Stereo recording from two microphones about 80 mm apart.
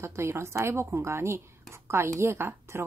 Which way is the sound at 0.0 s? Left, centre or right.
Right.